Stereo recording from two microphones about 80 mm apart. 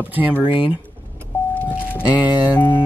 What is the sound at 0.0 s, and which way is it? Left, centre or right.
Speech, right.